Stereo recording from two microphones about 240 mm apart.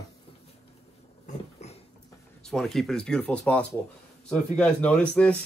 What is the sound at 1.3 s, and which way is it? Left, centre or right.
Dog, left.